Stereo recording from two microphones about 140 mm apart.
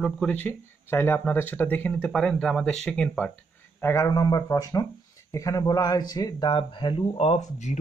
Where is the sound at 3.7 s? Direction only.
20° left (ahead or behind).